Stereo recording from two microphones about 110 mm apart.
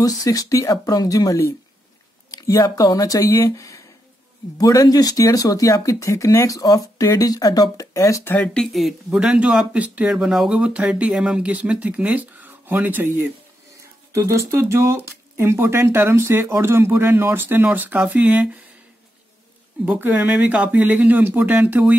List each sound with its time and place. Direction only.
0.0 s speech: 35° left (ahead or behind)
8.7 s speech: centre (ahead or behind)
19.8 s speech: 15° right (ahead or behind)